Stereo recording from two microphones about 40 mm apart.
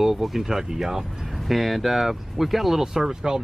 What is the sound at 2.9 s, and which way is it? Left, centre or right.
Speech, centre.